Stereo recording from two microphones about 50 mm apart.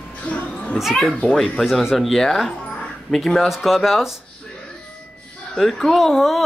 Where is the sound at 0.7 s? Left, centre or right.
Centre.